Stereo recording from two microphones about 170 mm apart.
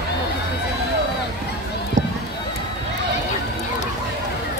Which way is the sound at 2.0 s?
45° right (ahead or behind).